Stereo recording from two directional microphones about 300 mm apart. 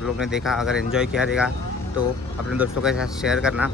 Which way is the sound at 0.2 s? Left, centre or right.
Centre.